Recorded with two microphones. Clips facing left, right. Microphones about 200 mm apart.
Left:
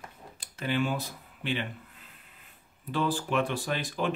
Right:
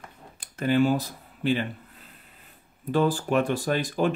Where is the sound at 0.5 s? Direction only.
45° right (ahead or behind).